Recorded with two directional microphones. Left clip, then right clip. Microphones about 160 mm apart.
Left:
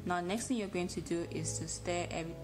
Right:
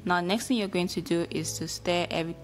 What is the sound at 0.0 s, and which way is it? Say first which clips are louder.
A woman's voice: right 9 dB; 30° right (ahead or behind).